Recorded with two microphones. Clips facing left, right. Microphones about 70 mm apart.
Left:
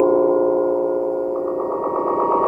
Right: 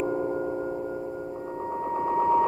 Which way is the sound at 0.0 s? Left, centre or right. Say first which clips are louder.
Left 13 dB; left.